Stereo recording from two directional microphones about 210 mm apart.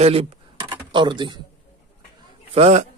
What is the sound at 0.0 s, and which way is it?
Computer keyboard, 25° right (ahead or behind).